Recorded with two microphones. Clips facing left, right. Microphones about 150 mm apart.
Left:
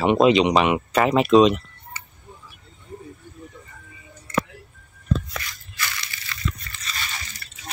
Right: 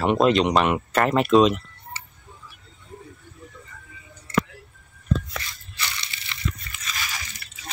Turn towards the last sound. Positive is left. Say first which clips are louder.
# even
turn(degrees=-10)  # may be behind; listen again after turning